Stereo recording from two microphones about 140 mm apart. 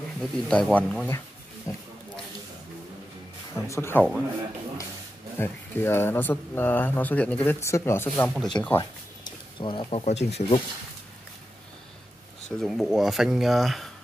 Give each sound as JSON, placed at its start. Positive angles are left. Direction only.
{"t": 0.2, "sound": "speech", "side_deg": 5}
{"t": 1.7, "sound": "speech", "side_deg": 20}
{"t": 3.5, "sound": "speech", "side_deg": 20}
{"t": 5.4, "sound": "speech", "side_deg": 15}
{"t": 8.3, "sound": "speech", "side_deg": 0}
{"t": 9.6, "sound": "speech", "side_deg": 35}
{"t": 12.4, "sound": "speech", "side_deg": 0}